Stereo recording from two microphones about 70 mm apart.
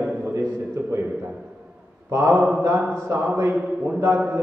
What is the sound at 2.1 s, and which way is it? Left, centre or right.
A man's voice, right.